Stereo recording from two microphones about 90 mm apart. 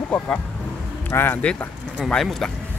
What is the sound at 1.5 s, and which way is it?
Speech, 10° left (ahead or behind).